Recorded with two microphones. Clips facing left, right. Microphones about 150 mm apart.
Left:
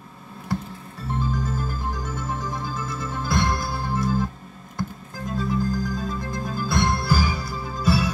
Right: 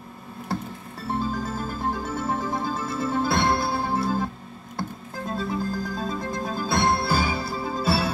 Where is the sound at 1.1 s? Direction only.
30° right (ahead or behind).